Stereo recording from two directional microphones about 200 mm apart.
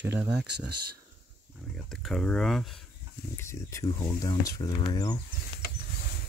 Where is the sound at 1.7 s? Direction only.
Centre (ahead or behind).